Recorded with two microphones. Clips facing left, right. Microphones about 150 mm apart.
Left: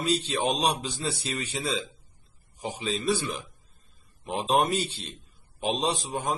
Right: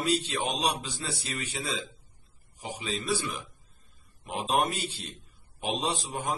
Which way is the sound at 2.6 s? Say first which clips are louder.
Left 4 dB; 20° left (ahead or behind).